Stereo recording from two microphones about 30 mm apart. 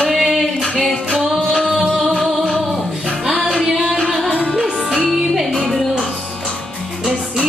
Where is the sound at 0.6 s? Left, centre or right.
Centre.